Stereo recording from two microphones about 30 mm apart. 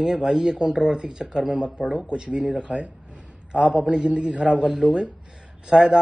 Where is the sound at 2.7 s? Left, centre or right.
Right.